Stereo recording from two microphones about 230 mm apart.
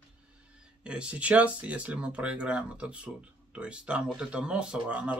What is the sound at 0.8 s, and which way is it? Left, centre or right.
Speech, centre.